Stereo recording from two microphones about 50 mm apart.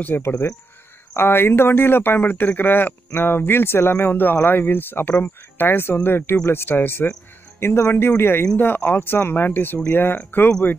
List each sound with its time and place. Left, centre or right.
0.2 s speech: left
6.7 s speech: left
7.6 s speech: left
7.9 s speech: left